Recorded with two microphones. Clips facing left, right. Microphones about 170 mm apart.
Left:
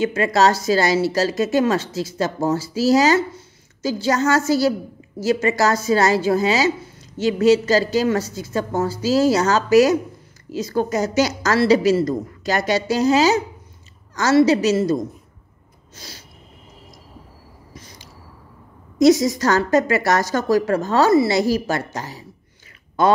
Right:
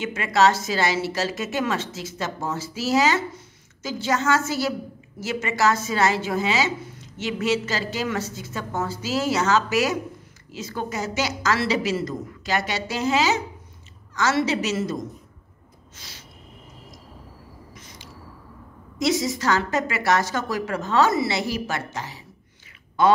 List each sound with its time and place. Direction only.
0.0 s a woman's voice: 35° left (ahead or behind)
16.0 s a woman's voice: 35° left (ahead or behind)
17.7 s a sound: 35° left (ahead or behind)
18.9 s a woman's voice: 40° left (ahead or behind)